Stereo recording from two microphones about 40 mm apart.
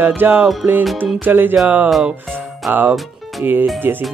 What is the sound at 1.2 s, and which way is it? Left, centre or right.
Speech, right.